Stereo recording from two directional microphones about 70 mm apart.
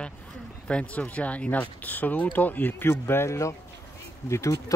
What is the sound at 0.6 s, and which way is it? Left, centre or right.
Speech, centre.